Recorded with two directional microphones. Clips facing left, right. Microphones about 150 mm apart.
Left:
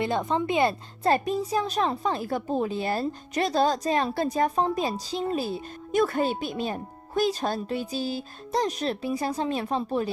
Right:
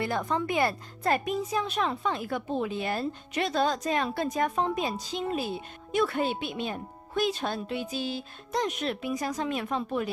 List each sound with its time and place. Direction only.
0.0 s speech: 20° left (ahead or behind)